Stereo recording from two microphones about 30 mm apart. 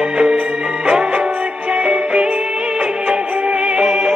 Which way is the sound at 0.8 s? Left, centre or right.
Right.